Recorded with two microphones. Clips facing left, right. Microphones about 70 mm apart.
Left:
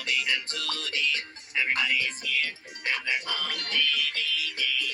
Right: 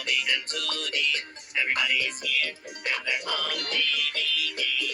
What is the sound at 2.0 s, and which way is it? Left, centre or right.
Music, left.